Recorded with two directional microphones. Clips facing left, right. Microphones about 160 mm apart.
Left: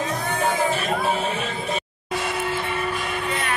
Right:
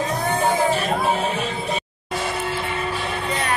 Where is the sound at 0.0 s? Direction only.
35° right (ahead or behind).